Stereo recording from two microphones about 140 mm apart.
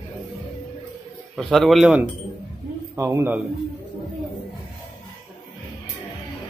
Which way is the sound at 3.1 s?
15° right (ahead or behind).